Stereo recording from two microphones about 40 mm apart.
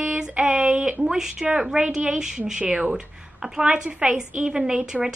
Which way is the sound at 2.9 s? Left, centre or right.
Centre.